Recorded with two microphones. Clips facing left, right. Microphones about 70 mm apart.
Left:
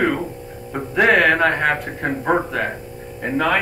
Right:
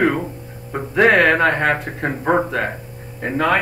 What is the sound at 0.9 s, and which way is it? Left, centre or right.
Music, centre.